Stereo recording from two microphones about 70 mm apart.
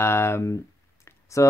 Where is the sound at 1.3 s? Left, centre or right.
Left.